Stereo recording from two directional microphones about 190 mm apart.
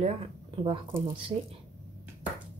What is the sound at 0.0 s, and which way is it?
Speech, 30° right (ahead or behind).